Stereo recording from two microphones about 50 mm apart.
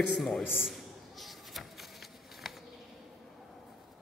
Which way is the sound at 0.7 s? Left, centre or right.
Centre.